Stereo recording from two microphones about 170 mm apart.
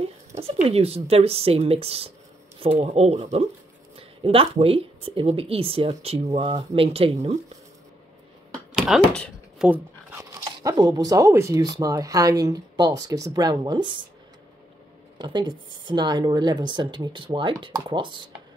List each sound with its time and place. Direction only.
0.4 s speech: 35° right (ahead or behind)
8.7 s a sound: centre (ahead or behind)
10.4 s speech: 20° right (ahead or behind)
15.1 s speech: 25° right (ahead or behind)